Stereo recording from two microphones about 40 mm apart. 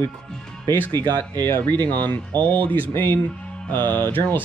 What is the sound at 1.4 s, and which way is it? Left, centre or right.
Speech, left.